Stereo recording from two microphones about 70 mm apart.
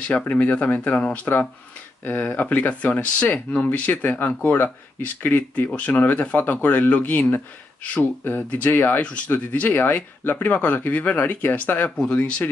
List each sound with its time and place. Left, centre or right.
0.0 s speech: centre